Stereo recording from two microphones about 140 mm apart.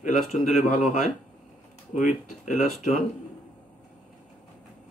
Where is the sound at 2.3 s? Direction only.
60° left (ahead or behind).